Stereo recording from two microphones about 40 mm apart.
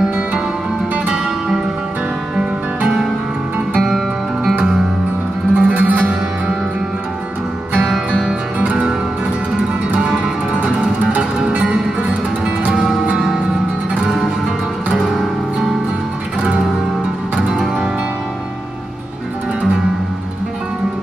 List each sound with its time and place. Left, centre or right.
5.5 s music: right
9.9 s music: right